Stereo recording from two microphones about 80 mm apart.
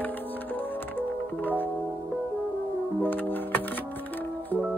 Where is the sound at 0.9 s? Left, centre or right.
Left.